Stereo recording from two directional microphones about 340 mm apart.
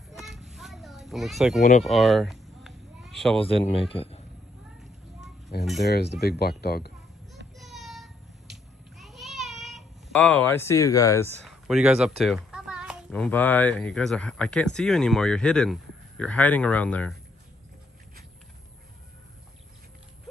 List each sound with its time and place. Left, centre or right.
0.1 s a sound: centre
1.6 s speech: left
1.9 s a sound: centre
3.9 s a man's voice: centre
5.5 s speech: left
7.5 s cat: centre
12.3 s speech: centre